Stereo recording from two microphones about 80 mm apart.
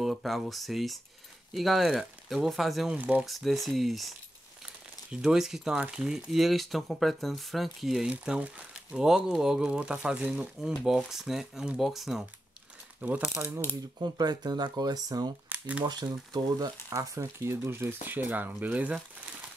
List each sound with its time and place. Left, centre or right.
0.0 s speech: centre
2.9 s speech: centre
3.3 s speech: centre
5.1 s speech: centre
8.1 s speech: centre
13.0 s speech: right
13.9 s speech: right
15.5 s crumpling: centre
15.8 s speech: right
16.9 s speech: right; by 18.9 s centre